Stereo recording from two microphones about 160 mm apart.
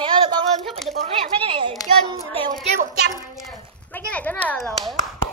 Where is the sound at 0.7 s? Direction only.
Centre (ahead or behind).